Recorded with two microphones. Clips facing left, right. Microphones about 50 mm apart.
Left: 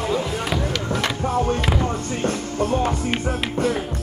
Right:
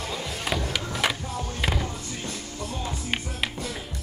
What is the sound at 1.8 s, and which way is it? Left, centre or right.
Music, left.